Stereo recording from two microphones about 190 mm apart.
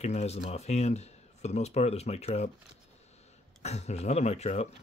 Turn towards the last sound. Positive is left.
turn(degrees=35)  # may be behind; listen again after turning